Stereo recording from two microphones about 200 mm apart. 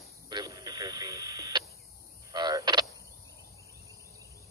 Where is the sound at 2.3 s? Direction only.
20° right (ahead or behind).